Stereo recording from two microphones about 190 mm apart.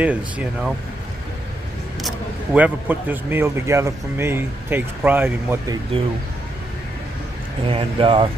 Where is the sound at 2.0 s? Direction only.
5° right (ahead or behind).